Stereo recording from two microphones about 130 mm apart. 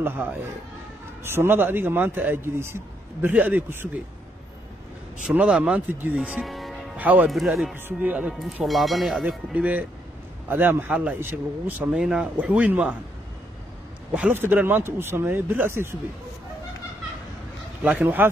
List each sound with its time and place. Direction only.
0.0 s a man's voice: 15° right (ahead or behind)
5.3 s a man's voice: 10° right (ahead or behind)
7.0 s speech: 10° right (ahead or behind)
7.2 s a man's voice: centre (ahead or behind)
8.6 s a man's voice: centre (ahead or behind)
14.1 s a man's voice: 10° right (ahead or behind)
17.8 s a man's voice: 15° right (ahead or behind)